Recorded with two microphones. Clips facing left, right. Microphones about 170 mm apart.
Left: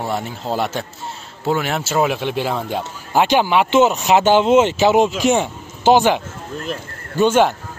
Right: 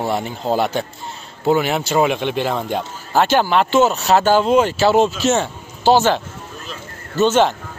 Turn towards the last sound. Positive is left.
turn(degrees=10)  # may be behind; listen again after turning